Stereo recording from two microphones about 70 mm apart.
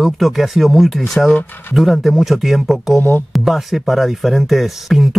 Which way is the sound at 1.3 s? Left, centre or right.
Left.